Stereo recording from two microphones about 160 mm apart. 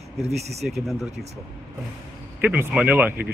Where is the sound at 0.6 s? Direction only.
5° right (ahead or behind).